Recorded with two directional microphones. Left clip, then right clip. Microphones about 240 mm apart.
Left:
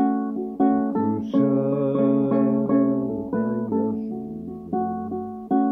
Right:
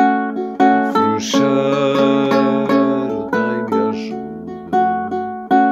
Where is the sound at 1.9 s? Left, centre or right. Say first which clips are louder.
Right 7 dB; right.